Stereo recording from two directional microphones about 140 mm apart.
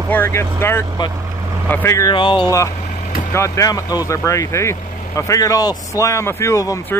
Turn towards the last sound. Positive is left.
turn(degrees=25)  # may be behind; listen again after turning